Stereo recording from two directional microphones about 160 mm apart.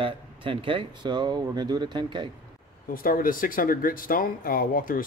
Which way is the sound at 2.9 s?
60° left (ahead or behind).